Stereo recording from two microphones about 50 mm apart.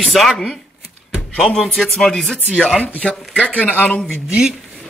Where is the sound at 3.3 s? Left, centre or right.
Left.